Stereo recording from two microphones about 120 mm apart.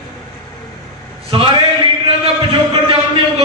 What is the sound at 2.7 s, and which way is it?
Speech, 45° right (ahead or behind).